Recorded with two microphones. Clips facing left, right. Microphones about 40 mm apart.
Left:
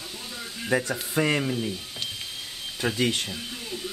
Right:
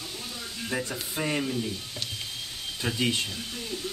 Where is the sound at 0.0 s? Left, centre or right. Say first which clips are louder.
Left 1 dB; centre.